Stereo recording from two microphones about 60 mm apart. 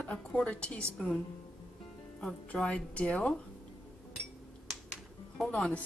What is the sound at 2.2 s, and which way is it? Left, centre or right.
Speech, centre.